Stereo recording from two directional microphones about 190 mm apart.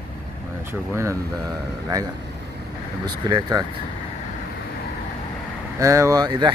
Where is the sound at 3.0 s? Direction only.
20° right (ahead or behind).